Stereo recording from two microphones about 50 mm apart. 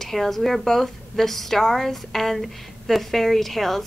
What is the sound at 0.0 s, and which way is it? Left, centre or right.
A woman's voice, centre.